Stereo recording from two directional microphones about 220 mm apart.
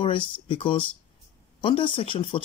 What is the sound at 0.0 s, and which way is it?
Speech, 25° left (ahead or behind).